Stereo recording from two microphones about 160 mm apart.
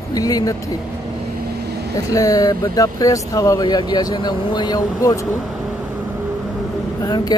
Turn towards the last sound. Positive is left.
turn(degrees=25)  # may be behind; listen again after turning